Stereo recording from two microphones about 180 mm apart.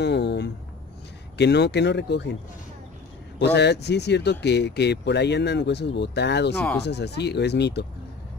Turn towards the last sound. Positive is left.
turn(degrees=70)  # may be behind; listen again after turning